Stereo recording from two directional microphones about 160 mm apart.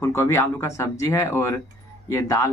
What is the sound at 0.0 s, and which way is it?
Speech, 15° left (ahead or behind).